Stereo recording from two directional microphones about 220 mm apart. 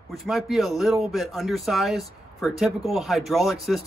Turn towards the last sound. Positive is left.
turn(degrees=0)  # may be behind; listen again after turning